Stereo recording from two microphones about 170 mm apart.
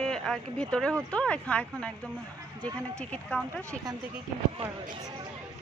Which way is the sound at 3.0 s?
5° left (ahead or behind).